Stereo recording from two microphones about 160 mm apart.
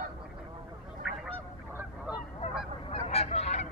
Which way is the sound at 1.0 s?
5° right (ahead or behind).